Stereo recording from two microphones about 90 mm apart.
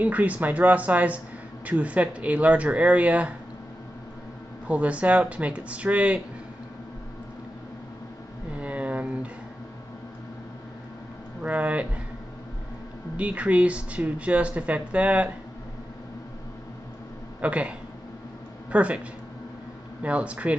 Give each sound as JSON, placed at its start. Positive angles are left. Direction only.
{"t": 0.0, "sound": "speech", "side_deg": -15}
{"t": 4.6, "sound": "speech", "side_deg": -15}
{"t": 8.5, "sound": "a sound", "side_deg": -15}
{"t": 11.4, "sound": "a sound", "side_deg": -15}
{"t": 13.1, "sound": "speech", "side_deg": -15}
{"t": 17.4, "sound": "speech", "side_deg": -15}
{"t": 20.0, "sound": "speech", "side_deg": -15}